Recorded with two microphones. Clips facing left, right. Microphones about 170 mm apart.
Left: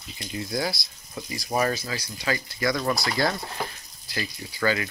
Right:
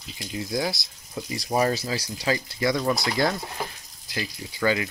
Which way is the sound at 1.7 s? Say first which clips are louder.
Right 3 dB; 30° right (ahead or behind).